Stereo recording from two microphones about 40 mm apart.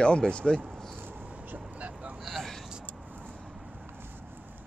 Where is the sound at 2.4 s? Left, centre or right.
Centre.